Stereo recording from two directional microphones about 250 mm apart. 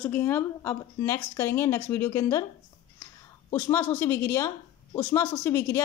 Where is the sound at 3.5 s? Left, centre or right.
Centre.